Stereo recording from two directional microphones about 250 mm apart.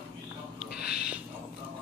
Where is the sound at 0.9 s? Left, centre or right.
Centre.